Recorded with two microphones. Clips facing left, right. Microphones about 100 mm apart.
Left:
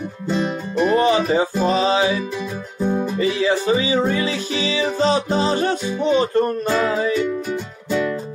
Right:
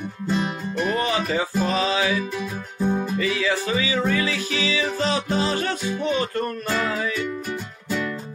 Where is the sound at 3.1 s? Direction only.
30° left (ahead or behind).